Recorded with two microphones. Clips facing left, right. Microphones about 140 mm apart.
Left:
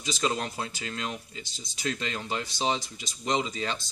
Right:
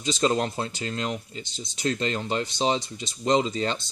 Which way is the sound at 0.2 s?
35° right (ahead or behind).